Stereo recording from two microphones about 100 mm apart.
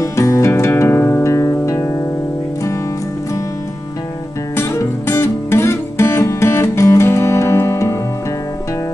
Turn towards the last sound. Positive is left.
turn(degrees=30)  # may be behind; listen again after turning